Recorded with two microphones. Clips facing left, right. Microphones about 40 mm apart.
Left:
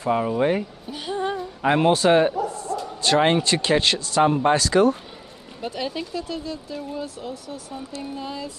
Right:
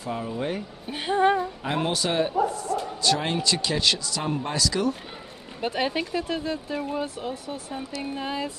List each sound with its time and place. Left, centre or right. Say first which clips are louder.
0.0 s speech: left 8 dB; left
0.8 s female singing: right 9 dB; right
1.6 s speech: left 8 dB; left
2.6 s bow-wow: even; right
3.0 s speech: left 8 dB; left
5.6 s speech: right 2 dB; right